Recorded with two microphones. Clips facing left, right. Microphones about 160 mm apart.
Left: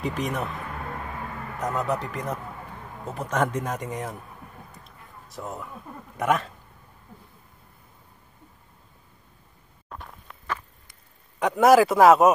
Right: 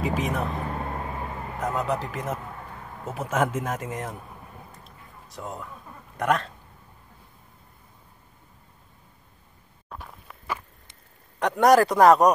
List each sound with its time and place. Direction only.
0.0 s a man's voice: centre (ahead or behind)
0.6 s vehicle: 30° right (ahead or behind)
1.6 s a man's voice: centre (ahead or behind)
4.8 s music: centre (ahead or behind)
6.1 s a man's voice: 5° left (ahead or behind)
9.8 s walk: centre (ahead or behind)
11.3 s a man's voice: centre (ahead or behind)